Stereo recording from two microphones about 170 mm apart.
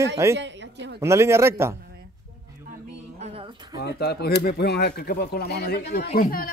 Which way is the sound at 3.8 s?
75° left (ahead or behind).